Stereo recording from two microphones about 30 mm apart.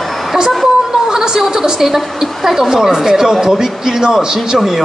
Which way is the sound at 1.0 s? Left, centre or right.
Centre.